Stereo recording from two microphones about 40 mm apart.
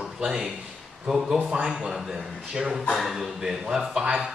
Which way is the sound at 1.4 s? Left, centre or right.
Right.